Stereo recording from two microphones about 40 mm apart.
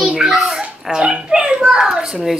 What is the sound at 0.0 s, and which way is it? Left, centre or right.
Babbling, centre.